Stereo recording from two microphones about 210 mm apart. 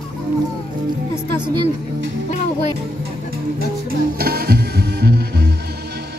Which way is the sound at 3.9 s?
45° right (ahead or behind).